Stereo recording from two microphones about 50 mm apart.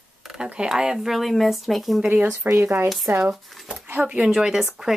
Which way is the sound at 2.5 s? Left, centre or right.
Right.